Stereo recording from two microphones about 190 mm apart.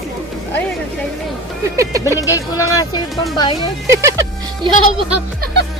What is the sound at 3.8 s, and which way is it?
Speech, 15° right (ahead or behind).